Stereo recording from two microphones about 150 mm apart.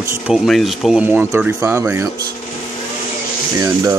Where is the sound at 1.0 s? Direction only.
10° right (ahead or behind).